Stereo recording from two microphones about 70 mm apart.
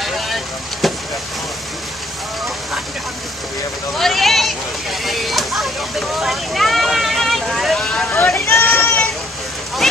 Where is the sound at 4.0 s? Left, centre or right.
Centre.